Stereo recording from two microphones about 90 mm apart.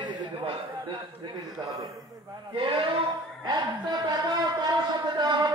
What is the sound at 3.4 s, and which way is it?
A man's voice, 55° right (ahead or behind).